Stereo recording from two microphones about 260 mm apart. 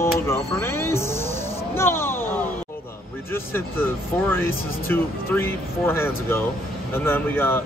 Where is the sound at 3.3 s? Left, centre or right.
Centre.